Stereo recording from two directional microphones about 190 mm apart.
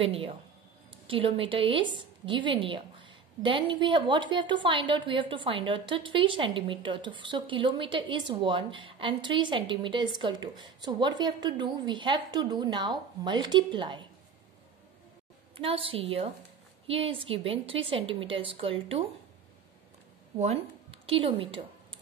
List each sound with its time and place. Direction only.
0.0 s a woman's voice: 30° right (ahead or behind)
15.5 s a woman's voice: 30° right (ahead or behind)
20.3 s a woman's voice: 30° right (ahead or behind)